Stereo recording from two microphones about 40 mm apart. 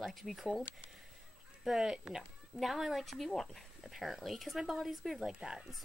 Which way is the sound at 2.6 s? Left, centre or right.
Centre.